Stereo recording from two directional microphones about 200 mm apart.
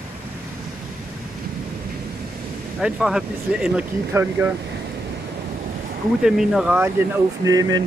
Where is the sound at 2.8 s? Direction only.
5° right (ahead or behind).